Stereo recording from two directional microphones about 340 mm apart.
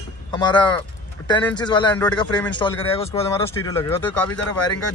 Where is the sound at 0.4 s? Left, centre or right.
Centre.